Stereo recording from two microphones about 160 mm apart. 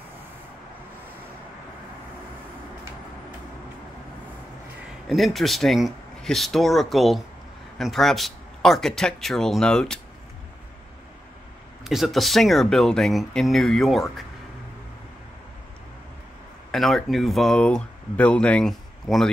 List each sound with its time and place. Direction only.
5.0 s speech: centre (ahead or behind)
11.8 s speech: centre (ahead or behind)
16.7 s speech: centre (ahead or behind)